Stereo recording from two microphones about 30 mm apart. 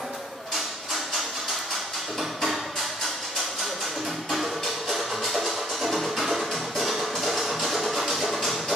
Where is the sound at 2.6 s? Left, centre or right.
Centre.